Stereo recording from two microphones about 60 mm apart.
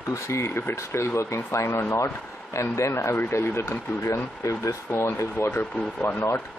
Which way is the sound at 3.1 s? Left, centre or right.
Left.